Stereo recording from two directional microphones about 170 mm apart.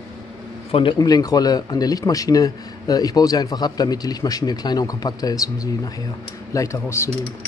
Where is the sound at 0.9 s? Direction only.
20° left (ahead or behind).